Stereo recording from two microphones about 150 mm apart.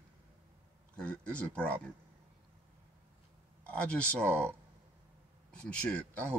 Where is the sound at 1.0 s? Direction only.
10° left (ahead or behind).